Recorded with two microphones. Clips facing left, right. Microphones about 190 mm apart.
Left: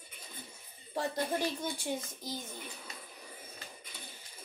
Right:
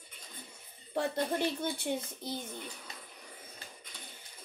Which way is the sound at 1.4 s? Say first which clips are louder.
Right 2 dB; 60° right (ahead or behind).